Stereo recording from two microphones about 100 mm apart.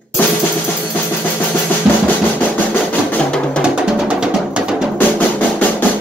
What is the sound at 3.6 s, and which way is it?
Music, 5° right (ahead or behind).